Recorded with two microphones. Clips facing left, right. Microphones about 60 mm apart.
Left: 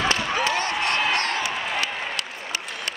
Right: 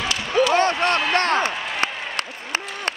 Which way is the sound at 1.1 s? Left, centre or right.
Right.